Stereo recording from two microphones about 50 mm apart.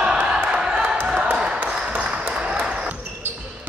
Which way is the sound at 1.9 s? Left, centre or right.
Right.